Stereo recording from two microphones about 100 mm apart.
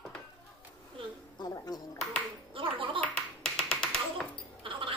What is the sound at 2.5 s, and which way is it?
Music, 60° right (ahead or behind).